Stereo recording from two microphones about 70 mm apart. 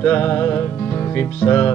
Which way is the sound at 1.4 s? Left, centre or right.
Left.